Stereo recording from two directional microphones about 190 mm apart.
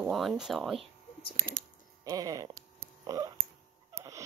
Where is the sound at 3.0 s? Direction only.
15° right (ahead or behind).